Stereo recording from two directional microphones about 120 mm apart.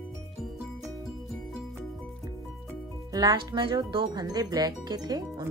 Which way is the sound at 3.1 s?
30° right (ahead or behind).